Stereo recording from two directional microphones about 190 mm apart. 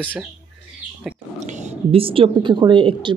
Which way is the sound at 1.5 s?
40° right (ahead or behind).